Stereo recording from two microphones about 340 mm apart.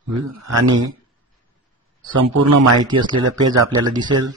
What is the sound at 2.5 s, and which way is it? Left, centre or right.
Speech, right.